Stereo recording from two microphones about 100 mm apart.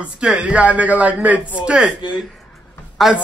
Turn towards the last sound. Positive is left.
turn(degrees=0)  # may be behind; listen again after turning